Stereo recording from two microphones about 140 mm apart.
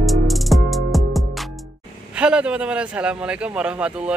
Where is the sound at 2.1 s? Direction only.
10° right (ahead or behind).